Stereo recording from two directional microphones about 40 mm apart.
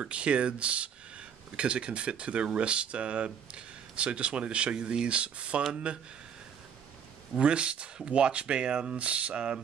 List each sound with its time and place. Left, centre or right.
0.0 s speech: right
7.3 s speech: right